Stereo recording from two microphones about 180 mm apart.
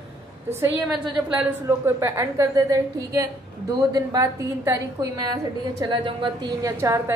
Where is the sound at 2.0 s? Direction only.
15° right (ahead or behind).